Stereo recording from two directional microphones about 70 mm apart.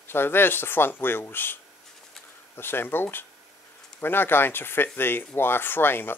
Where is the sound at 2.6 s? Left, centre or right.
Left.